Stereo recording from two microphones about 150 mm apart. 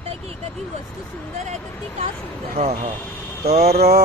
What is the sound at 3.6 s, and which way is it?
Speech, 90° right.